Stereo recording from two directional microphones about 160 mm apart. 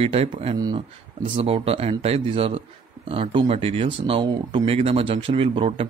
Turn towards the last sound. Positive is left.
turn(degrees=-35)  # may be behind; listen again after turning